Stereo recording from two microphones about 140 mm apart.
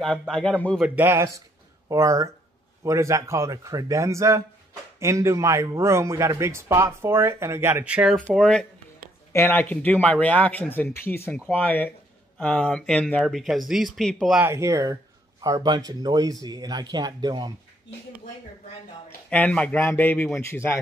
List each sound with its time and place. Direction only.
0.3 s speech: 5° left (ahead or behind)
0.7 s speech: 10° right (ahead or behind)
8.4 s speech: 5° left (ahead or behind)
9.3 s a man's voice: 15° left (ahead or behind); by 14.4 s centre (ahead or behind)
14.4 s speech: 20° right (ahead or behind)
19.0 s a man's voice: 10° left (ahead or behind)